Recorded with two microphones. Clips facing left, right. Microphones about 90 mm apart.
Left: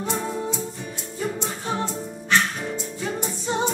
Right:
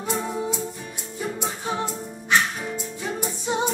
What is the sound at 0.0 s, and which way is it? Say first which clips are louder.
Music: even; 10° right (ahead or behind).